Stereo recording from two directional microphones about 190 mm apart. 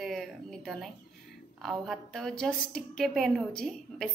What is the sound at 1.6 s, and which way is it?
A woman's voice, centre (ahead or behind).